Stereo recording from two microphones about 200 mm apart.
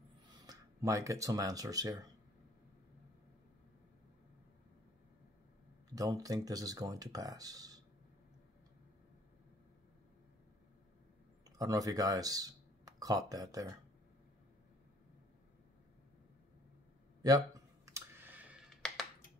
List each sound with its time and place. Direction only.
0.3 s speech: 20° right (ahead or behind)
5.9 s speech: 20° right (ahead or behind)
11.5 s speech: 15° right (ahead or behind)
17.8 s clicking: 10° right (ahead or behind)
18.8 s a sound: 5° left (ahead or behind)